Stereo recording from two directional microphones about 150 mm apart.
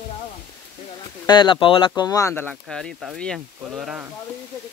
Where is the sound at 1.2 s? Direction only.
30° left (ahead or behind).